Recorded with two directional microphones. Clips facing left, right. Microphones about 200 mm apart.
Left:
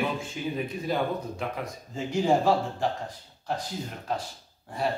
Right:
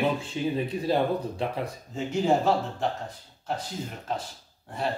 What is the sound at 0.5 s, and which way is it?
Speech, 30° right (ahead or behind).